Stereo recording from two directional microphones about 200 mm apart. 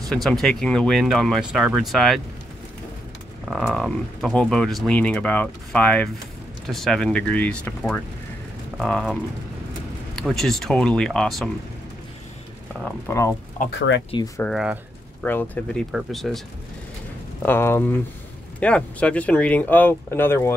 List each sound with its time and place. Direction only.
0.1 s speech: 5° left (ahead or behind)
3.4 s speech: centre (ahead or behind)
13.1 s speech: 10° left (ahead or behind)
13.7 s speech: 65° left (ahead or behind)
14.1 s speech: 15° left (ahead or behind)
14.4 s speech: centre (ahead or behind)
15.2 s speech: 10° left (ahead or behind)
17.4 s speech: 10° left (ahead or behind)